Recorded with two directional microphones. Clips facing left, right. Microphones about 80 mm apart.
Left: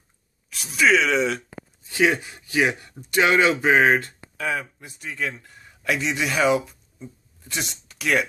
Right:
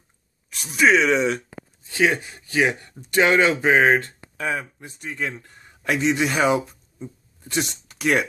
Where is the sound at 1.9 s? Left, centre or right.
Centre.